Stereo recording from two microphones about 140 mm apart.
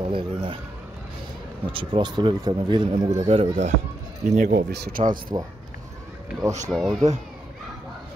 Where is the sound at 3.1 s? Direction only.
45° right (ahead or behind).